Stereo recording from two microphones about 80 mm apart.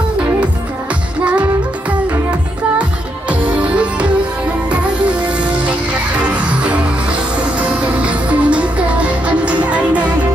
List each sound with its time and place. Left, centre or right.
3.3 s music: centre
6.2 s music: centre